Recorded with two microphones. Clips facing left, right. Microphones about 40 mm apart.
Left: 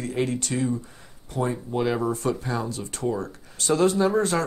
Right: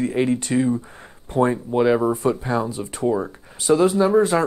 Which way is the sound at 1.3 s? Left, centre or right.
Right.